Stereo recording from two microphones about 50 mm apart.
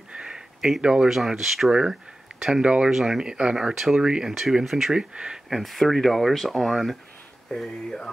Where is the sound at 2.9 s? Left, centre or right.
Centre.